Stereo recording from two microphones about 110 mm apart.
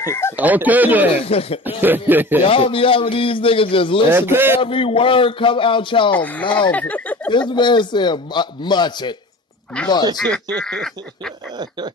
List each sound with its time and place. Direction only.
0.0 s speech: 25° left (ahead or behind)
0.4 s speech: 15° right (ahead or behind)
1.2 s a man's voice: 65° left (ahead or behind)
1.8 s speech: 15° right (ahead or behind)
2.4 s a man's voice: 55° left (ahead or behind)
4.1 s a man's voice: 20° right (ahead or behind)
4.6 s a man's voice: 55° left (ahead or behind)
6.1 s speech: 15° left (ahead or behind)
6.4 s a man's voice: 45° left (ahead or behind)
6.7 s speech: 15° left (ahead or behind)
7.2 s a man's voice: 45° left (ahead or behind)
10.2 s speech: 10° left (ahead or behind)